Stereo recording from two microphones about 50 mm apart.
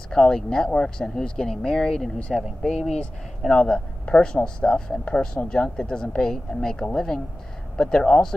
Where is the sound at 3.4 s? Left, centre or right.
Centre.